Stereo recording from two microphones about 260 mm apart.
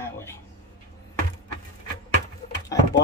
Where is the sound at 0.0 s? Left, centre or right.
Centre.